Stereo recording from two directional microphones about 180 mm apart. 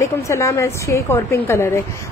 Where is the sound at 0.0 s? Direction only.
15° left (ahead or behind).